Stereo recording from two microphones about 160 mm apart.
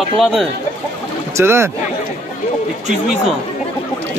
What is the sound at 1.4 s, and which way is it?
Speech, 15° right (ahead or behind).